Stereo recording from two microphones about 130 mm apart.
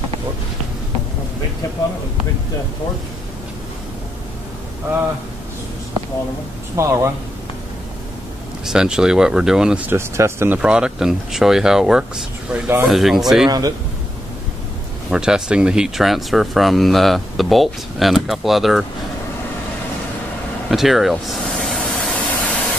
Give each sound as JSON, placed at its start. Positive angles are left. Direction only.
{"t": 6.8, "sound": "speech", "side_deg": -20}
{"t": 8.6, "sound": "speech", "side_deg": -5}
{"t": 9.8, "sound": "speech", "side_deg": -20}
{"t": 10.6, "sound": "speech", "side_deg": -5}
{"t": 13.5, "sound": "speech", "side_deg": -30}
{"t": 15.0, "sound": "speech", "side_deg": -5}
{"t": 20.7, "sound": "vehicle", "side_deg": 0}